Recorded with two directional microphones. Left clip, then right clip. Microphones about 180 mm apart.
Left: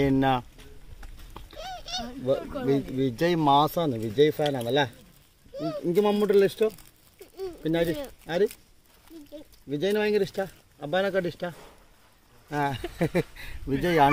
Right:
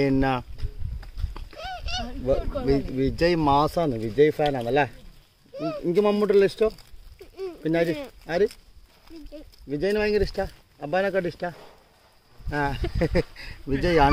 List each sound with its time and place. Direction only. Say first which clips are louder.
0.0 s speech: even; 5° left (ahead or behind)
1.3 s a sound: right 3 dB; 5° right (ahead or behind)
2.3 s speech: right 3 dB; 35° right (ahead or behind)
2.6 s speech: right 2 dB; centre (ahead or behind)
7.3 s a sound: right 2 dB; 5° right (ahead or behind)
9.7 s speech: right 2 dB; 5° right (ahead or behind)